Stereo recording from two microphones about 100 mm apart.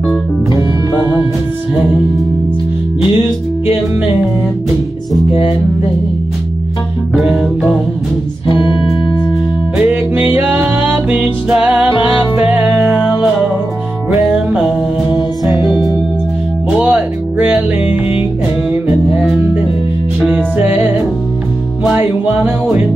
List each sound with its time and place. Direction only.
7.2 s music: 5° right (ahead or behind)
8.5 s music: 55° left (ahead or behind)
9.8 s music: 15° right (ahead or behind)
15.4 s music: centre (ahead or behind)
16.7 s music: 15° right (ahead or behind)
20.5 s music: 20° right (ahead or behind)
21.9 s music: 20° right (ahead or behind)